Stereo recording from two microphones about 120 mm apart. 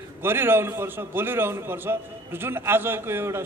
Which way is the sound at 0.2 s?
20° right (ahead or behind).